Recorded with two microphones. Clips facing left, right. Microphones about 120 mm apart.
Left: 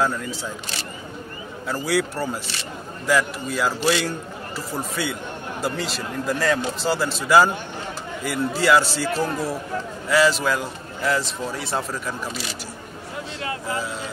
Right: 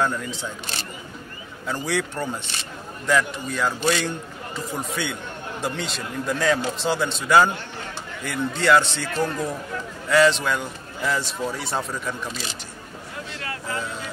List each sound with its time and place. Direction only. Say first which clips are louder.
0.0 s a man's voice: left 1 dB; 5° left (ahead or behind)
1.7 s a man's voice: left 3 dB; 5° left (ahead or behind)
13.4 s vehicle: left 3 dB; 25° left (ahead or behind)